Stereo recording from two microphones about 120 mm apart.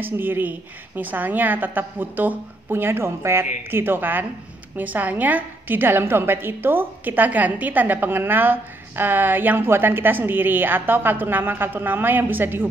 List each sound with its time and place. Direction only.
0.0 s a woman's voice: 15° right (ahead or behind)